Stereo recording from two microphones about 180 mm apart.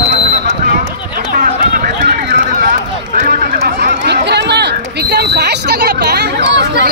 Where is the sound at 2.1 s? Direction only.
70° right (ahead or behind).